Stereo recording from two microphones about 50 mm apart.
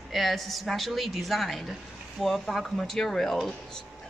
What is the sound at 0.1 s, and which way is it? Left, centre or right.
A woman's voice, centre.